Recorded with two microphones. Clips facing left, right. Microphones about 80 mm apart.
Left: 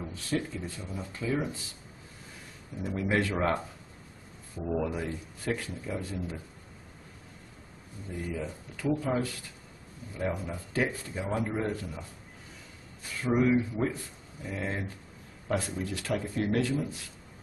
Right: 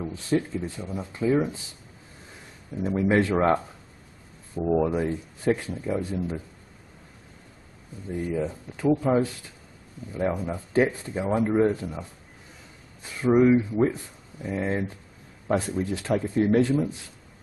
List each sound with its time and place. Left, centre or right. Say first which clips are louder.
0.0 s a sound: right 7 dB; right
0.8 s speech: right 8 dB; right
2.8 s speech: right 7 dB; right
4.6 s speech: right 8 dB; right
8.3 s speech: right 9 dB; right
13.2 s speech: right 7 dB; right